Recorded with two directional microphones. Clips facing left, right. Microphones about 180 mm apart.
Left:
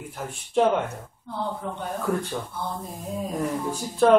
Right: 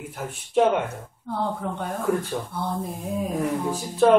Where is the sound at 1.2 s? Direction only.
55° right (ahead or behind).